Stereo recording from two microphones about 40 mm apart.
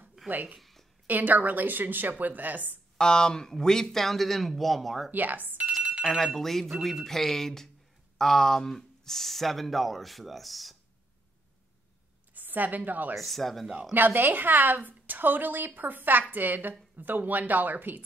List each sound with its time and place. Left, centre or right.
0.3 s a woman's voice: right
0.6 s a sound: centre
1.0 s a woman's voice: right
3.0 s speech: centre
5.1 s a woman's voice: right
5.8 s telephone bell ringing: right
6.0 s speech: centre
12.4 s a woman's voice: right
13.2 s speech: centre
13.9 s a woman's voice: right